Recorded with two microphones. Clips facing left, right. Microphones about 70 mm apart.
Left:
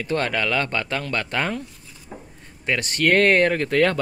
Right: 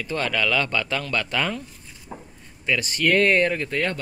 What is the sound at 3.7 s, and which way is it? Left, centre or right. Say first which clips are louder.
Speech: left 7 dB; left.